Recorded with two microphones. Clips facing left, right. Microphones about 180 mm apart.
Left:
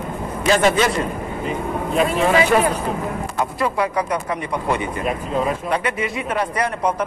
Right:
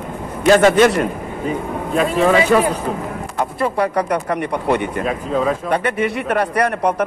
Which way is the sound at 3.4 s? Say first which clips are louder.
Right 3 dB; 50° right (ahead or behind).